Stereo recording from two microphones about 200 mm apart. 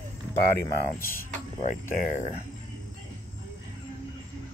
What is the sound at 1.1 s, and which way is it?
Speech, 40° left (ahead or behind).